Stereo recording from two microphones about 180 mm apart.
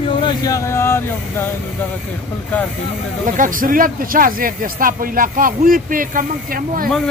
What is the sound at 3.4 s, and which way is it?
A man's voice, 50° right (ahead or behind).